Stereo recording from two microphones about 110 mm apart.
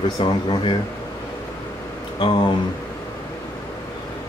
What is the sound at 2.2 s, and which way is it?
Speech, 45° left (ahead or behind).